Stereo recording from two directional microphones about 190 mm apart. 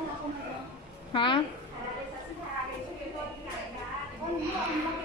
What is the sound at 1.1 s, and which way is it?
Speech, 25° left (ahead or behind).